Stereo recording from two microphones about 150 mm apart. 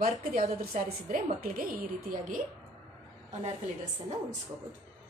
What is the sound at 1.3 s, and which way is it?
A woman's voice, 75° right (ahead or behind).